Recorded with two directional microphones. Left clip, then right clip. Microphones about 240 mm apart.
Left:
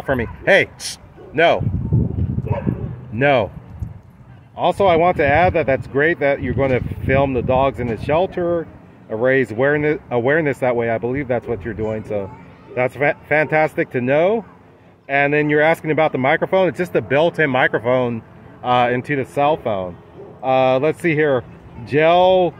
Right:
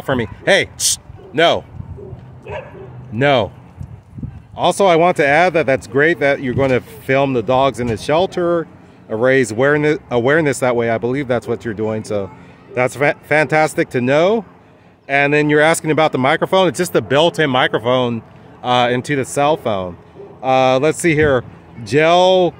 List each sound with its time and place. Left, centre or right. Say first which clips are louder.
0.0 s speech: right 1 dB; right
3.2 s speech: right 1 dB; right
4.6 s speech: right 2 dB; right